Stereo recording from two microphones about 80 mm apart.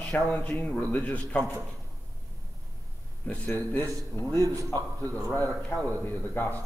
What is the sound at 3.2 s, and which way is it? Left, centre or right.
Speech, centre.